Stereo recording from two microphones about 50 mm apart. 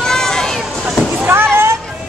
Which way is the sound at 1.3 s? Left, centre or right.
Right.